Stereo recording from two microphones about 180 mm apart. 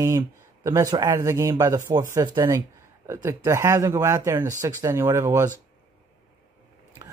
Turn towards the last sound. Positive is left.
turn(degrees=-15)  # may be behind; listen again after turning